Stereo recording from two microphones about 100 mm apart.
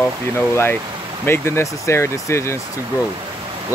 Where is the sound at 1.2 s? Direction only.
25° left (ahead or behind).